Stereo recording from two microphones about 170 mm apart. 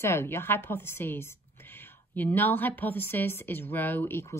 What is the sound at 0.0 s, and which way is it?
A woman's voice, 15° left (ahead or behind).